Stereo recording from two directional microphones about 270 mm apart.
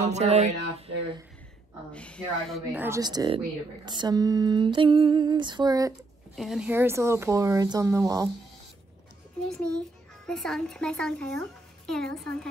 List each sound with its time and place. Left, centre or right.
0.0 s speech: right
1.9 s lullaby: centre
6.3 s lullaby: centre
9.4 s a child's voice: centre